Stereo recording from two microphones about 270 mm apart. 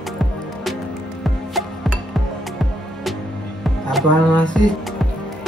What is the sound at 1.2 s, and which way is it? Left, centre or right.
Music, centre.